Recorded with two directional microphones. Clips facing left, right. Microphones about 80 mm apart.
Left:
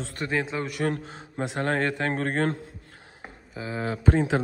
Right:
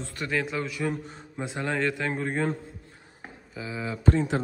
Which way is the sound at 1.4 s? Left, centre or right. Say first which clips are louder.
Left 3 dB; left.